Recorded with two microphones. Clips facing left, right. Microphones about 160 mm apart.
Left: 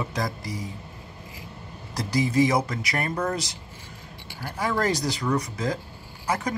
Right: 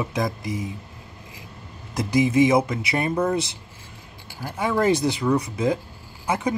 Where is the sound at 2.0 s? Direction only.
20° right (ahead or behind).